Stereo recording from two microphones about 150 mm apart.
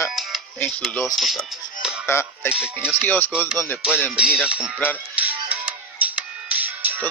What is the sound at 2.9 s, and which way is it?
Speech, 10° left (ahead or behind).